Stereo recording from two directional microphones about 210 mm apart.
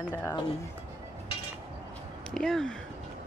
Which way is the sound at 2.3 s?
5° left (ahead or behind).